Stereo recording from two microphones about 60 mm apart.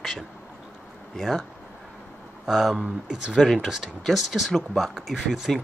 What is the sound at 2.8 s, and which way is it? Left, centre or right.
Speech, centre.